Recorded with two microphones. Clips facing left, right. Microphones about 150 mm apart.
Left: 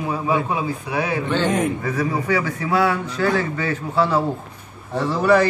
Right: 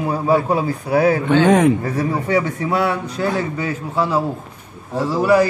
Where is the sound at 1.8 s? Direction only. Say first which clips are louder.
Right 2 dB; 30° right (ahead or behind).